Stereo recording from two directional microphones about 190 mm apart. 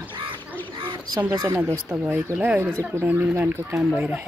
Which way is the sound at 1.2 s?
15° right (ahead or behind).